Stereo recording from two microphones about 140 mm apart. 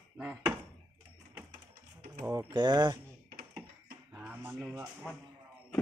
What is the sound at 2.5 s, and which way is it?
Speech, 30° right (ahead or behind).